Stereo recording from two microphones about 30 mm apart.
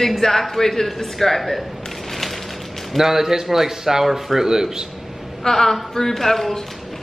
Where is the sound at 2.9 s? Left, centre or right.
Centre.